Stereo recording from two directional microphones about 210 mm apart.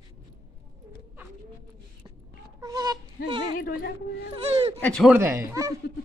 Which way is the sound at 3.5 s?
45° left (ahead or behind).